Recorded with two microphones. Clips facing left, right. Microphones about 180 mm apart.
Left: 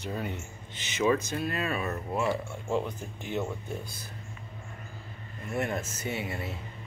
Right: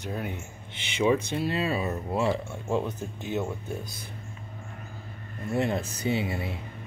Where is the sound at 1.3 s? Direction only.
25° right (ahead or behind).